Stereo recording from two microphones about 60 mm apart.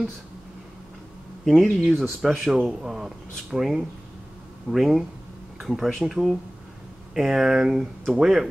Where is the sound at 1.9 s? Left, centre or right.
Centre.